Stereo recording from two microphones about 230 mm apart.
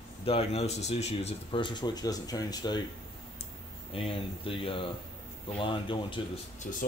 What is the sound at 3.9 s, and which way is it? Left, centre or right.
Speech, left.